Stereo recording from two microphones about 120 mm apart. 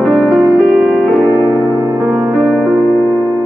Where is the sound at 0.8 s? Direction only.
5° right (ahead or behind).